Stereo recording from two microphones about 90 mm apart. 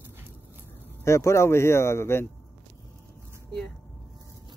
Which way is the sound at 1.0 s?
30° left (ahead or behind).